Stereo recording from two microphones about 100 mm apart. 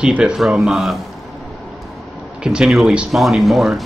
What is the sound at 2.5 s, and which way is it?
Speech, 10° right (ahead or behind).